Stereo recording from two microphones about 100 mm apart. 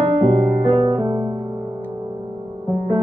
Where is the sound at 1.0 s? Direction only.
50° right (ahead or behind).